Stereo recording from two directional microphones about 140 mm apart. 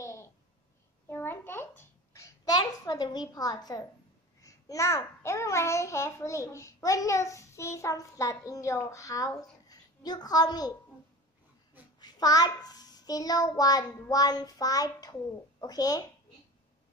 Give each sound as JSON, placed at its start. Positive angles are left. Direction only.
{"t": 0.0, "sound": "a sound", "side_deg": 20}
{"t": 4.4, "sound": "a child's voice", "side_deg": 25}
{"t": 12.0, "sound": "a child's voice", "side_deg": 25}